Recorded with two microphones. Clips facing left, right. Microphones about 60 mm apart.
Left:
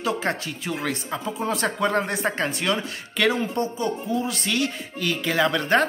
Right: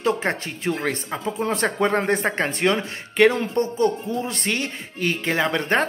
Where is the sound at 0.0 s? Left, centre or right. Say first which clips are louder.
Right 3 dB; right.